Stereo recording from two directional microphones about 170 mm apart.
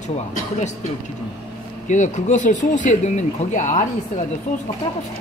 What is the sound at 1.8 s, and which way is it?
Speech, 45° left (ahead or behind).